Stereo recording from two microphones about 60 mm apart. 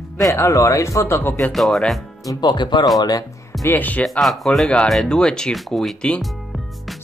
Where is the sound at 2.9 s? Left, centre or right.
Left.